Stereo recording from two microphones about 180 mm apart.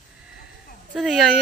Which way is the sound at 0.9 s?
5° right (ahead or behind).